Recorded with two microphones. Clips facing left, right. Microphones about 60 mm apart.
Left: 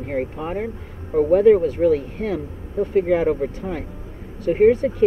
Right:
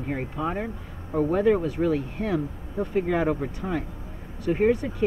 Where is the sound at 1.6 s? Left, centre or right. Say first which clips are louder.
Left 6 dB; left.